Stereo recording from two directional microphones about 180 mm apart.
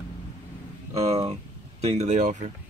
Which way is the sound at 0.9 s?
35° right (ahead or behind).